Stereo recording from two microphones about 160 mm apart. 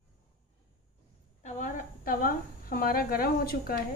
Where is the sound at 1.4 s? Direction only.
55° left (ahead or behind).